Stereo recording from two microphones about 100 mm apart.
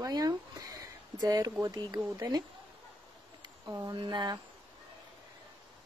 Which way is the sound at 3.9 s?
50° right (ahead or behind).